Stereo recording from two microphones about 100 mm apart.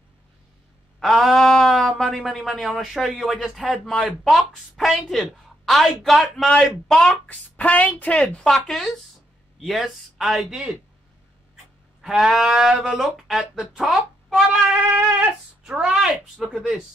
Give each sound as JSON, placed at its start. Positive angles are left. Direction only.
{"t": 0.9, "sound": "speech", "side_deg": 0}
{"t": 12.0, "sound": "speech", "side_deg": -5}
{"t": 14.7, "sound": "a sound", "side_deg": -20}
{"t": 15.6, "sound": "speech", "side_deg": -5}